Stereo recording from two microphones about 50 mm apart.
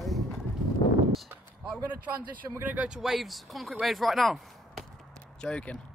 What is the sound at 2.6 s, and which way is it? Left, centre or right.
Speech, right.